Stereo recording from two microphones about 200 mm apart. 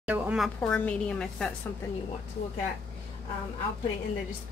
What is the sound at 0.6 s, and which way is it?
Speech, 5° left (ahead or behind).